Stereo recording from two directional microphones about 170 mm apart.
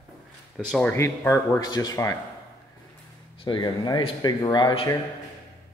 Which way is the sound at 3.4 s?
25° left (ahead or behind).